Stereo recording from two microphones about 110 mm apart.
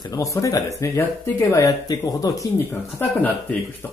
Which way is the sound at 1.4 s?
30° left (ahead or behind).